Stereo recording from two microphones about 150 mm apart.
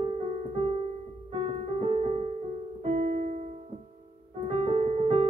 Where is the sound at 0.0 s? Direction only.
40° right (ahead or behind).